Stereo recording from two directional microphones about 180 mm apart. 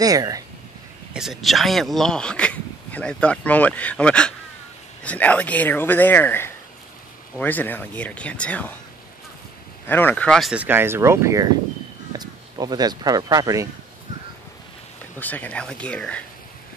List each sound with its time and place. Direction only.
0.0 s speech: 20° right (ahead or behind)
1.1 s speech: centre (ahead or behind)
9.8 s speech: 10° left (ahead or behind); by 13.7 s 20° right (ahead or behind)
15.1 s speech: 10° left (ahead or behind)